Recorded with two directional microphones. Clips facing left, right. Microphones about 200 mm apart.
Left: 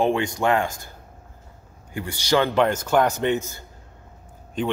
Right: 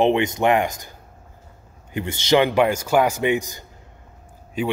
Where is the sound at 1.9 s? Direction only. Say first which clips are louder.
Right 3 dB; 20° right (ahead or behind).